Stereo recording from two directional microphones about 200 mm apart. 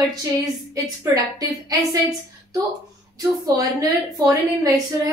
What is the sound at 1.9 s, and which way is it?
A woman's voice, 15° right (ahead or behind).